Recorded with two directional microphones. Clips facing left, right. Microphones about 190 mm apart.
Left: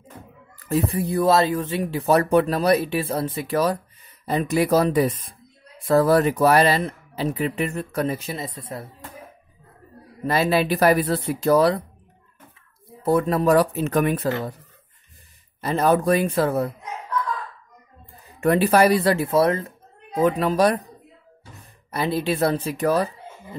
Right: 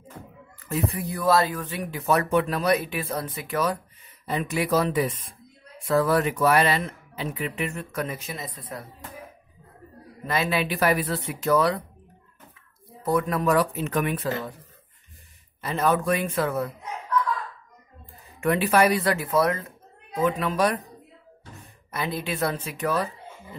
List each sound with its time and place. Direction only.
0.7 s speech: 30° left (ahead or behind)
10.2 s speech: 35° left (ahead or behind)
13.0 s speech: 30° left (ahead or behind)
15.6 s speech: 35° left (ahead or behind)
18.4 s speech: 35° left (ahead or behind)
21.9 s speech: 30° left (ahead or behind)